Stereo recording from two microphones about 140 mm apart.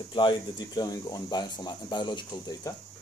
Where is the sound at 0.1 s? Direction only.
30° left (ahead or behind).